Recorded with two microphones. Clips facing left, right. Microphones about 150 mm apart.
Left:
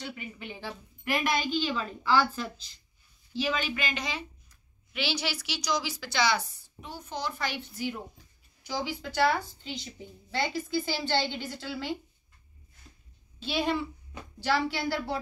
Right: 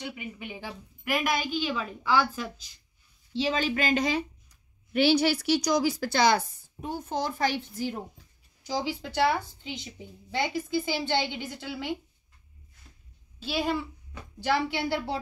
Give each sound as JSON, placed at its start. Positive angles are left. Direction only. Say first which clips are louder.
{"t": 0.0, "sound": "a woman's voice", "louder": "right 2 dB", "side_deg": -15}
{"t": 3.3, "sound": "a woman's voice", "louder": "right 4 dB", "side_deg": -35}
{"t": 13.4, "sound": "a child's voice", "louder": "even", "side_deg": -5}
{"t": 14.4, "sound": "speech", "louder": "right 1 dB", "side_deg": -20}